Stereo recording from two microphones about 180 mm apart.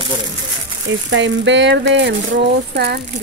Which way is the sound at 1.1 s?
85° right.